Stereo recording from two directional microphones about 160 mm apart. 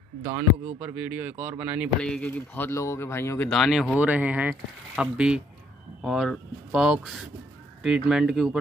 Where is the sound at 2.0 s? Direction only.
5° left (ahead or behind).